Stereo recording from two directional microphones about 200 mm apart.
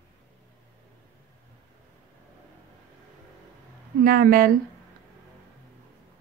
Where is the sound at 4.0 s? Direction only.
45° right (ahead or behind).